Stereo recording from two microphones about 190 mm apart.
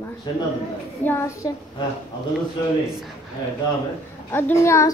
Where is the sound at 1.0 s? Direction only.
15° left (ahead or behind).